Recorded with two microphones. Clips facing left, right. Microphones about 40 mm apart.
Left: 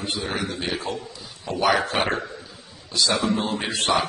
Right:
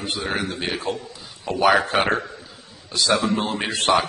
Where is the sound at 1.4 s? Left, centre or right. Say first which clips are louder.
Right 3 dB; right.